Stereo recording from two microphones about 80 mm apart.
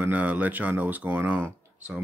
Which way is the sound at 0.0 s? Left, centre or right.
Centre.